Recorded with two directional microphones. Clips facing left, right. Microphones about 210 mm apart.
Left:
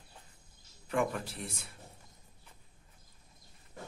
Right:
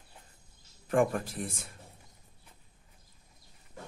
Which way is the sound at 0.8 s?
50° right (ahead or behind).